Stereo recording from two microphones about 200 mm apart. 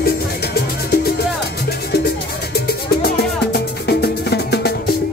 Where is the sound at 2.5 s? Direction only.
50° left (ahead or behind).